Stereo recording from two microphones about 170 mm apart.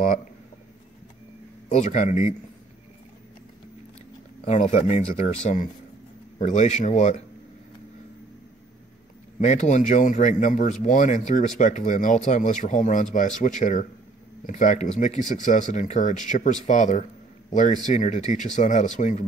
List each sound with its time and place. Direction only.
1.7 s speech: 45° left (ahead or behind)
4.5 s speech: 45° left (ahead or behind)
9.4 s speech: 45° left (ahead or behind)